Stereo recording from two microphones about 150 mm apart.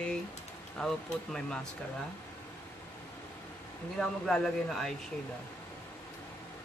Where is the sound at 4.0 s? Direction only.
5° left (ahead or behind).